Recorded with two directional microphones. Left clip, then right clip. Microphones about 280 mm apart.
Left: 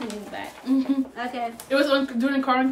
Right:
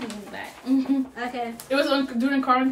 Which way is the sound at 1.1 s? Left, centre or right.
Centre.